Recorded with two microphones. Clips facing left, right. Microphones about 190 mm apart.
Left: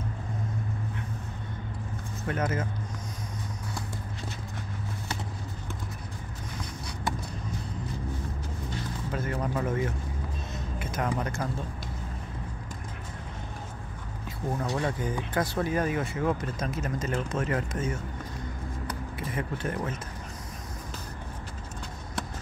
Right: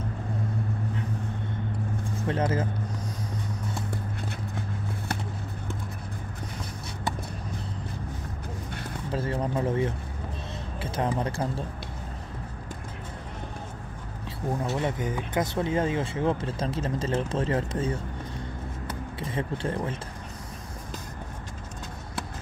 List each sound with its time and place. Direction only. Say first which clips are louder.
2.2 s speech: right 3 dB; 30° right (ahead or behind)
9.1 s speech: right 3 dB; 30° right (ahead or behind)
14.8 s speech: right 1 dB; 20° right (ahead or behind)